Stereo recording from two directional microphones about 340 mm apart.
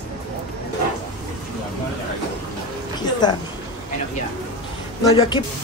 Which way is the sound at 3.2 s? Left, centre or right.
Centre.